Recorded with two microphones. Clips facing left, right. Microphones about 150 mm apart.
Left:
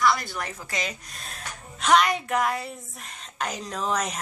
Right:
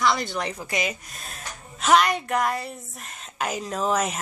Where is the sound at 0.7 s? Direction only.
5° right (ahead or behind).